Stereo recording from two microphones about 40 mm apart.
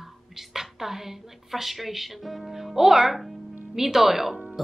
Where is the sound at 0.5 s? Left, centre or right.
Centre.